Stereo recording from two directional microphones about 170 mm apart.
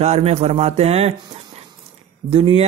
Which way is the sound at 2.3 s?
35° right (ahead or behind).